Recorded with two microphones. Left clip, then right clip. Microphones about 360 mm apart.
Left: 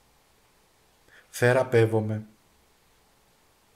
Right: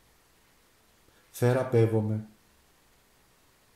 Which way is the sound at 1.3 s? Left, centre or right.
Left.